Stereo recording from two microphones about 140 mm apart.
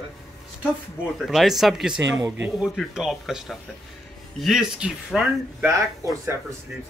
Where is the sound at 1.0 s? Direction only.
5° right (ahead or behind).